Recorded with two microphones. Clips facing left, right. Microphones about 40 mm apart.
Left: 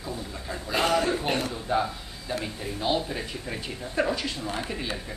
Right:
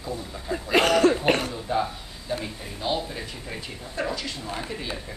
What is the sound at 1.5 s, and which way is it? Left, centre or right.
Speech, centre.